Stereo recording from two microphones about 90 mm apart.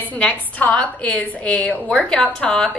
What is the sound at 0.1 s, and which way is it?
A woman's voice, 15° left (ahead or behind).